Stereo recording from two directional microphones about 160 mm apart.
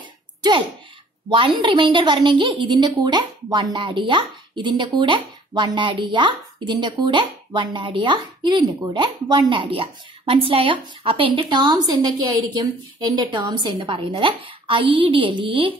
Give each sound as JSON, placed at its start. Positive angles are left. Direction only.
{"t": 0.4, "sound": "a woman's voice", "side_deg": -30}